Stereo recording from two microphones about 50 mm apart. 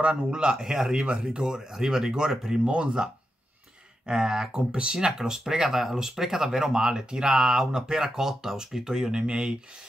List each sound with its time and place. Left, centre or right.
0.0 s speech: centre
0.9 s speech: centre
4.1 s speech: centre
4.6 s speech: right